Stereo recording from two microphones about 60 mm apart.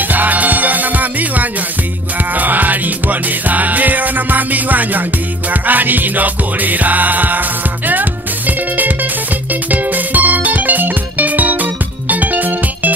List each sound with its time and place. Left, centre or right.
0.1 s music: right